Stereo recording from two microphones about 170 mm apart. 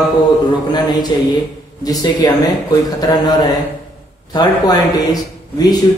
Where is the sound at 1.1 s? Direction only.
25° left (ahead or behind).